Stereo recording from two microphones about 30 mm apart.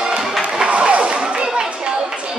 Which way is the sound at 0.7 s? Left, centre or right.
Right.